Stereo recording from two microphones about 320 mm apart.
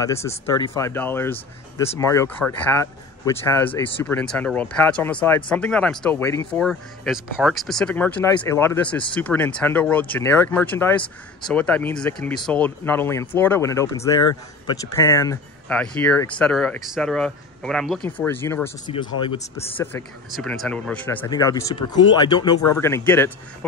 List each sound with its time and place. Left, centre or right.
0.0 s speech: centre